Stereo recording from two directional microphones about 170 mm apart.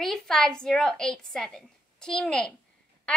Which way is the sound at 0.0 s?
Centre (ahead or behind).